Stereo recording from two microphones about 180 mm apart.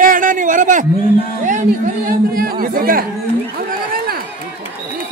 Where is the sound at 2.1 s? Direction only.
55° right (ahead or behind).